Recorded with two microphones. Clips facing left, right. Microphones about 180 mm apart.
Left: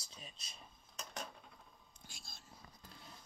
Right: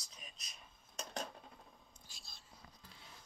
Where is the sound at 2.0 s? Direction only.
50° left (ahead or behind).